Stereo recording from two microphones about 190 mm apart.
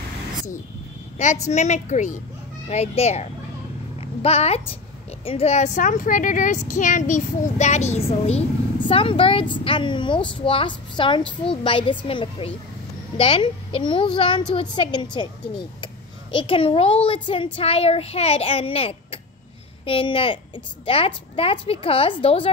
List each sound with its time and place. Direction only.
1.1 s a woman's voice: 35° left (ahead or behind)